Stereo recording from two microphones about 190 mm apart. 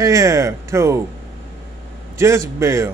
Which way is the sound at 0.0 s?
15° right (ahead or behind).